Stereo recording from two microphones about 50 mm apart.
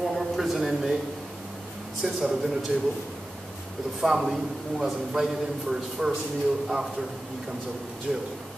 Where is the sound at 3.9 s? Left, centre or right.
Centre.